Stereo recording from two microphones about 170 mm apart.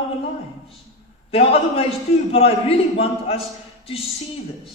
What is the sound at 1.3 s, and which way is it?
A woman's voice, 35° left (ahead or behind).